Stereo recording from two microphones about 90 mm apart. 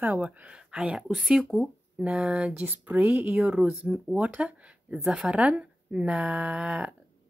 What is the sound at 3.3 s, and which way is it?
Speech, 5° right (ahead or behind).